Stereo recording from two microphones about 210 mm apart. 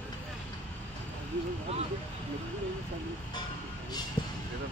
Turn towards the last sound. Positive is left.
turn(degrees=20)  # may be behind; listen again after turning